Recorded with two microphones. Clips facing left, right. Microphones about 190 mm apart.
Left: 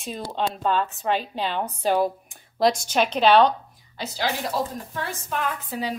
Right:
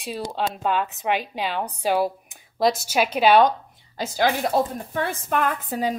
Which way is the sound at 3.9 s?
45° right (ahead or behind).